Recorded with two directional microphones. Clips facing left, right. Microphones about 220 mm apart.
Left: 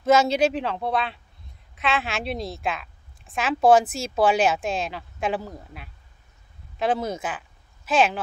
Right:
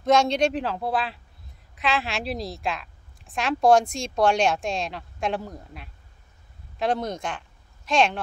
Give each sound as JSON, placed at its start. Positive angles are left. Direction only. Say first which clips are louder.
{"t": 0.0, "sound": "a woman's voice", "louder": "left 1 dB", "side_deg": 5}